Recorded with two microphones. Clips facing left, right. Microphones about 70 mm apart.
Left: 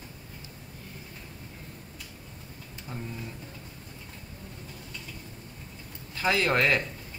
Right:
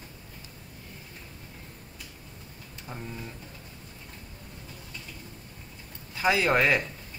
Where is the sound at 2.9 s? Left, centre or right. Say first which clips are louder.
Even; centre.